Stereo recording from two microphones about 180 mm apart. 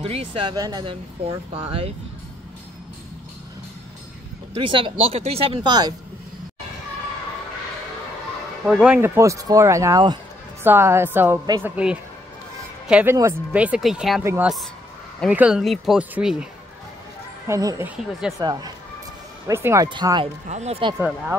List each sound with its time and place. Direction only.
0.0 s speech: 35° right (ahead or behind)
4.6 s speech: 30° right (ahead or behind)
8.6 s speech: 5° right (ahead or behind)
14.2 s speech: 15° right (ahead or behind)
17.5 s speech: 15° right (ahead or behind)
17.8 s speech: 5° right (ahead or behind)
18.4 s speech: 20° right (ahead or behind)
20.4 s speech: 40° right (ahead or behind)